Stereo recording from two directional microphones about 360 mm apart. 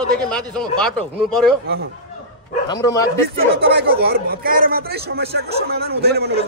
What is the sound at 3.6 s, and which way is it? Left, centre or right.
A man's voice, right.